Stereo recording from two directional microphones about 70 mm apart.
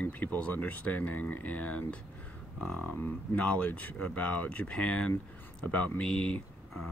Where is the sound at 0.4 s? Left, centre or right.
Left.